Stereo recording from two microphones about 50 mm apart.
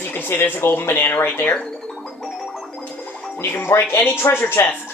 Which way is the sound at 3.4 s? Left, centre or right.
Left.